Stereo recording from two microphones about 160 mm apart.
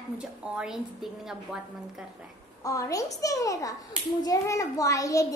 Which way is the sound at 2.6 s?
20° left (ahead or behind).